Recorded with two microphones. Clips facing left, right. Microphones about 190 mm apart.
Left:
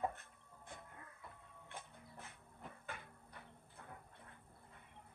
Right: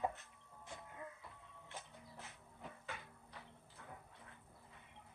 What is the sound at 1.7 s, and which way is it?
Printer, 55° left (ahead or behind).